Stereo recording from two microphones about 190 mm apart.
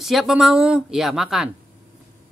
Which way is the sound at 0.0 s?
Centre (ahead or behind).